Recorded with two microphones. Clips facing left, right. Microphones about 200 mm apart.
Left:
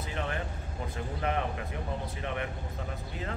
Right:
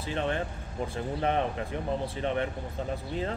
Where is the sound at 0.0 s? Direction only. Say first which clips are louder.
Right 5 dB; 30° right (ahead or behind).